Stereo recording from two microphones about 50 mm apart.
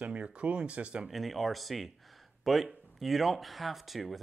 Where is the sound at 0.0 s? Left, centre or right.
Right.